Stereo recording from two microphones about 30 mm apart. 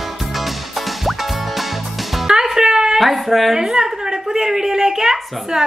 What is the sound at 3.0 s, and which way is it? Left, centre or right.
Speech, centre.